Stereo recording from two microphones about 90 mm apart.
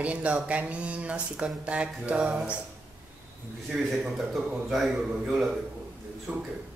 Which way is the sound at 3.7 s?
5° right (ahead or behind).